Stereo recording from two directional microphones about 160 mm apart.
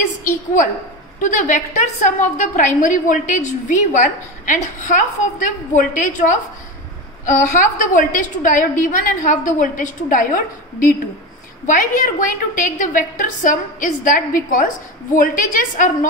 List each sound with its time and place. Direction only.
1.2 s a woman's voice: 50° left (ahead or behind)